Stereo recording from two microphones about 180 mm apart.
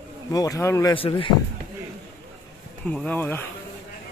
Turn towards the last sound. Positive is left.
turn(degrees=10)  # may be behind; listen again after turning